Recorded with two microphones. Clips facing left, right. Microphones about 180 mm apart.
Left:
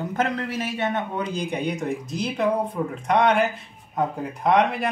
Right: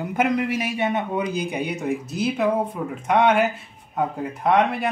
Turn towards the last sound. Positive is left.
turn(degrees=0)  # may be behind; listen again after turning